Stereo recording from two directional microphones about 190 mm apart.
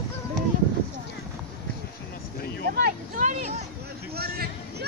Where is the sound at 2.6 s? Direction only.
50° right (ahead or behind).